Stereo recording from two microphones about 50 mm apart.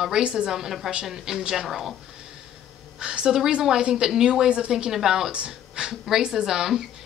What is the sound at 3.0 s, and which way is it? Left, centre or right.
Speech, centre.